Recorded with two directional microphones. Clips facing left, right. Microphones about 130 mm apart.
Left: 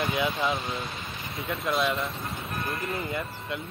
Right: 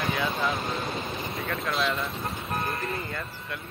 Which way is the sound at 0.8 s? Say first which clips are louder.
Right 6 dB; 25° right (ahead or behind).